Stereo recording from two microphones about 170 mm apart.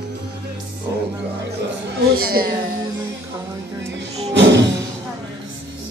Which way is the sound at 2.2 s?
60° right (ahead or behind).